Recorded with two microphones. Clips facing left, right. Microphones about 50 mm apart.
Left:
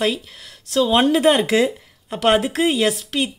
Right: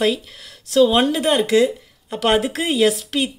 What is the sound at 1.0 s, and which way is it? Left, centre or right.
Speech, centre.